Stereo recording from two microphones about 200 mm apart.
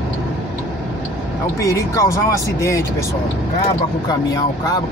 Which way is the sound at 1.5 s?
15° left (ahead or behind).